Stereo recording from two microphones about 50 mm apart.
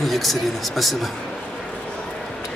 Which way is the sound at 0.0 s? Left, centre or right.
Centre.